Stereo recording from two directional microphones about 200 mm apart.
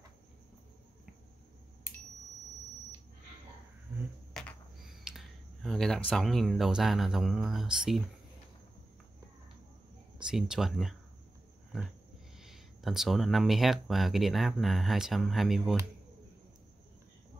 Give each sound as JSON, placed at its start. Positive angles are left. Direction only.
{"t": 4.3, "sound": "a sound", "side_deg": 5}
{"t": 6.0, "sound": "speech", "side_deg": 0}
{"t": 10.3, "sound": "speech", "side_deg": 0}